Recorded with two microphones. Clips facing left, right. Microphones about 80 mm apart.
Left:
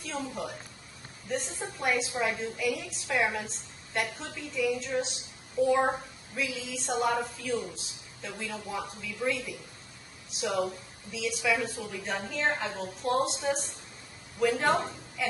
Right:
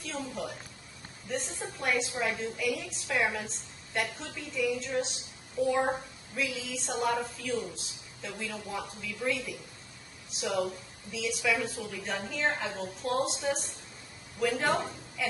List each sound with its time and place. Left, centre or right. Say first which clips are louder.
0.1 s a woman's voice: left 2 dB; centre
10.5 s a woman's voice: left 1 dB; centre
11.1 s a woman's voice: left 1 dB; centre
14.4 s a woman's voice: left 3 dB; centre